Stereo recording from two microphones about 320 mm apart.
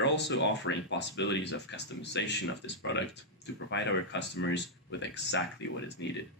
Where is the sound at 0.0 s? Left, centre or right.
Left.